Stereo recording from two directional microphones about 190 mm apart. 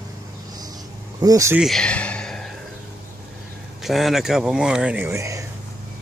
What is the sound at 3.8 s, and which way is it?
Speech, centre (ahead or behind).